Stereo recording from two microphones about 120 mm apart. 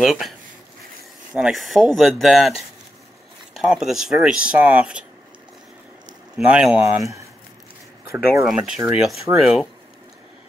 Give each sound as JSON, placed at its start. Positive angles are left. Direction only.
{"t": 0.0, "sound": "speech", "side_deg": 0}
{"t": 1.3, "sound": "speech", "side_deg": -5}
{"t": 3.5, "sound": "speech", "side_deg": -5}
{"t": 6.3, "sound": "speech", "side_deg": -10}
{"t": 7.0, "sound": "speech", "side_deg": -25}
{"t": 8.5, "sound": "speech", "side_deg": -5}